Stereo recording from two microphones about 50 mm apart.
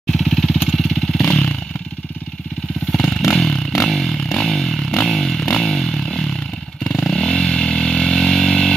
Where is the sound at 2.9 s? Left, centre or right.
Centre.